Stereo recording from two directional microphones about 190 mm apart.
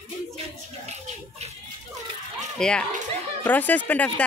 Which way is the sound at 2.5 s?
5° left (ahead or behind).